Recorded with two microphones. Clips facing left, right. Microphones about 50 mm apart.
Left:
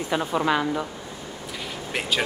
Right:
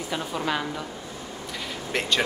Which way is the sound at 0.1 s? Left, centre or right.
Left.